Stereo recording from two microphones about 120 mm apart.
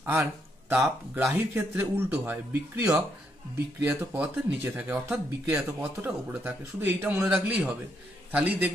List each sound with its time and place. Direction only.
0.0 s a sound: 20° right (ahead or behind)
1.1 s speech: 15° right (ahead or behind)
4.2 s speech: 15° right (ahead or behind)